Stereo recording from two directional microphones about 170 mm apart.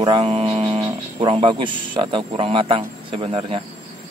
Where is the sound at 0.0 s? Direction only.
30° right (ahead or behind).